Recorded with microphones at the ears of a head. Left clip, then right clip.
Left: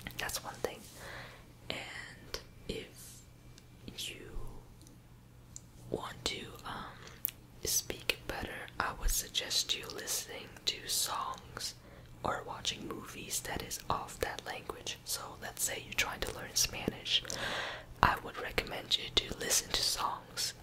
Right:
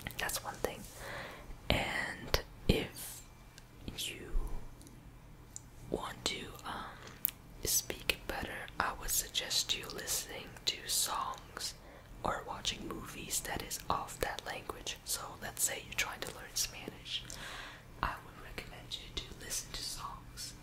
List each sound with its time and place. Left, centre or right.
0.0 s whispering: centre
1.7 s whispering: right
3.9 s whispering: centre
5.9 s whispering: centre
16.6 s whispering: left